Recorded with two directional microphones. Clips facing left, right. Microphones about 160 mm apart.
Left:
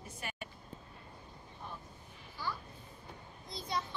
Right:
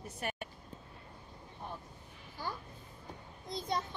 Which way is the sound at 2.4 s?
50° right (ahead or behind).